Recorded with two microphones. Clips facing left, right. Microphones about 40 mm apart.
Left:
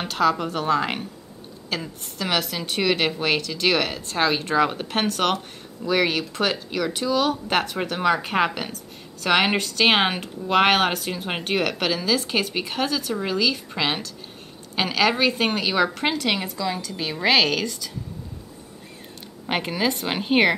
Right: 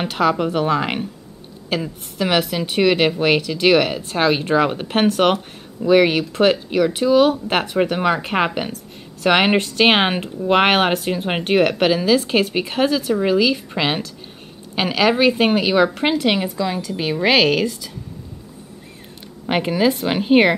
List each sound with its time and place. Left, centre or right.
0.0 s a woman's voice: centre
19.4 s a woman's voice: centre